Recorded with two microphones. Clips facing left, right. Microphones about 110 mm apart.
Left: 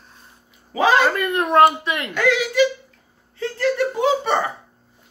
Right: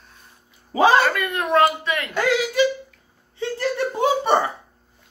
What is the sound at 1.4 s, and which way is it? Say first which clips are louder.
Speech: left 4 dB; 25° left (ahead or behind).